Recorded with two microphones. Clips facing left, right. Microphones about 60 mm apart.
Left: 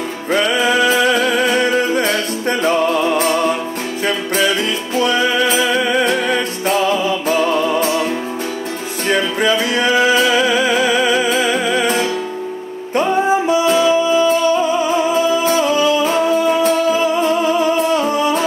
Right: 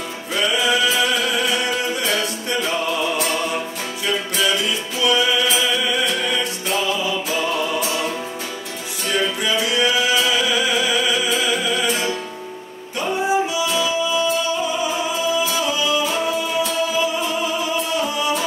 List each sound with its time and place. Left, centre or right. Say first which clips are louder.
0.3 s music: left 5 dB; left
9.4 s music: left 4 dB; left